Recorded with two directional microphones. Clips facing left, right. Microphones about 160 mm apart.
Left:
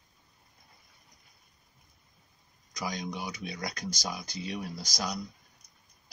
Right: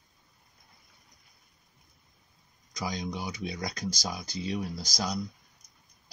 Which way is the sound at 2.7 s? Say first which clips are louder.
Right 1 dB; 30° right (ahead or behind).